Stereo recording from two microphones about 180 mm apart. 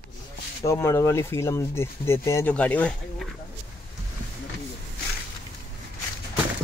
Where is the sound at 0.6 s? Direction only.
15° left (ahead or behind).